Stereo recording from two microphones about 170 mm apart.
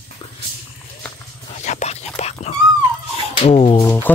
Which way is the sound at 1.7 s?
45° left (ahead or behind).